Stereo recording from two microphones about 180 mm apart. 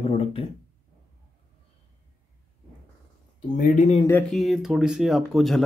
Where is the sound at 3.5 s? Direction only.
45° left (ahead or behind).